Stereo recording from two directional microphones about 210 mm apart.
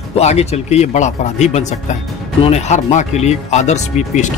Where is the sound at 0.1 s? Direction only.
30° left (ahead or behind).